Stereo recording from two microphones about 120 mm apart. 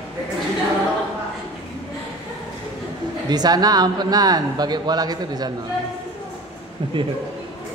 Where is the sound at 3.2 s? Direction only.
35° right (ahead or behind).